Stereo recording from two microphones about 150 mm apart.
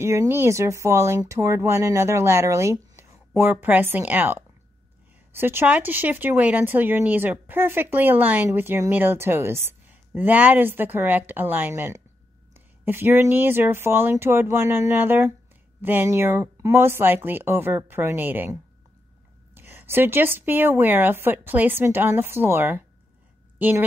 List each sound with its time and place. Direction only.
0.0 s speech: 20° right (ahead or behind)